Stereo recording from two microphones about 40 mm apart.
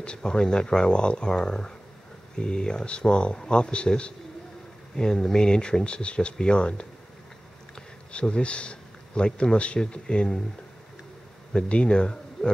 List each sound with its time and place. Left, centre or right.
0.0 s speech: left
4.9 s speech: centre
11.5 s speech: left